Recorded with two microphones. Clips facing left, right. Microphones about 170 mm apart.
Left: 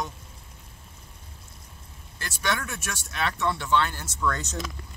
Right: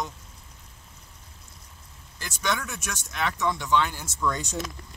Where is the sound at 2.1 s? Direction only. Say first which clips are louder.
Even; 15° right (ahead or behind).